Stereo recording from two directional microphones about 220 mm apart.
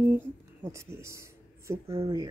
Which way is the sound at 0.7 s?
10° right (ahead or behind).